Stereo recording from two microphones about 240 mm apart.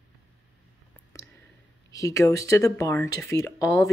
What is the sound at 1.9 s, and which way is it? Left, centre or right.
Speech, centre.